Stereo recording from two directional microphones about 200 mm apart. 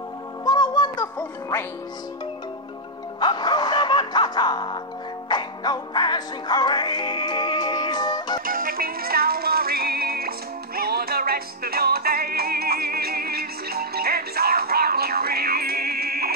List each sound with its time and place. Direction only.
0.5 s music: 20° left (ahead or behind)
3.2 s music: 20° left (ahead or behind)
8.5 s music: 45° right (ahead or behind)